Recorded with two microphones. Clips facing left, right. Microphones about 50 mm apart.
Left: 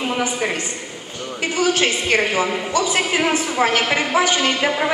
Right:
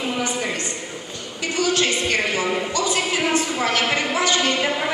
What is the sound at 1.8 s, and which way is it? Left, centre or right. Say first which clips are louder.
Speech: left 3 dB; left.